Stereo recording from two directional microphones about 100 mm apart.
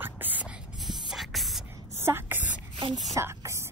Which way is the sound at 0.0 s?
20° right (ahead or behind).